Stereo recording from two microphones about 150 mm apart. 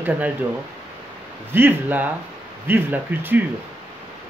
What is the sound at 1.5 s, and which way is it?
Speech, 15° right (ahead or behind).